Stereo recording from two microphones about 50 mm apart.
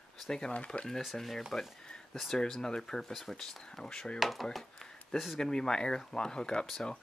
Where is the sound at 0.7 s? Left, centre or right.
Centre.